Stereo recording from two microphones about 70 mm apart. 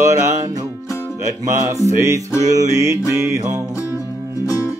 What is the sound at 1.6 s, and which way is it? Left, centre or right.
Music, right.